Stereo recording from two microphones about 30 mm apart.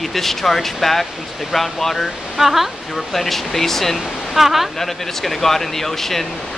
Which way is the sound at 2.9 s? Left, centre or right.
Centre.